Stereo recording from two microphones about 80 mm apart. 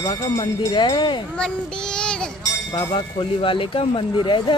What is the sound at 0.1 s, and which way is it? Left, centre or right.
Speech, left.